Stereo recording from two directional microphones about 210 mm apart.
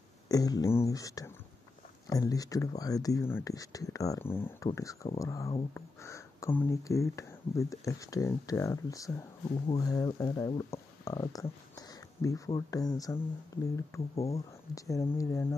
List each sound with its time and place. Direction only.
0.3 s speech: 15° left (ahead or behind)
14.1 s speech: 30° left (ahead or behind)
14.8 s speech: 15° left (ahead or behind)